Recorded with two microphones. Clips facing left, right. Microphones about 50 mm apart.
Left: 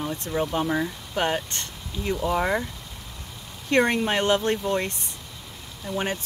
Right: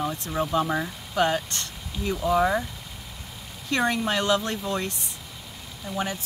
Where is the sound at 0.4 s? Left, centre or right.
Centre.